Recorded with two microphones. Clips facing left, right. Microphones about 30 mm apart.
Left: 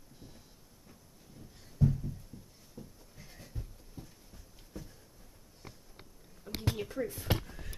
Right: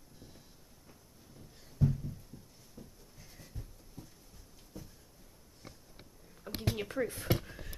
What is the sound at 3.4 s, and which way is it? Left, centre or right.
Goat, centre.